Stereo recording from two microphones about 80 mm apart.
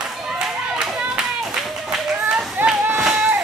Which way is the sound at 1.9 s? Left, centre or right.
Centre.